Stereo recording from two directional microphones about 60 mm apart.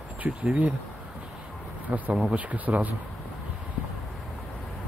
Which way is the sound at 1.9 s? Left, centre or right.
Right.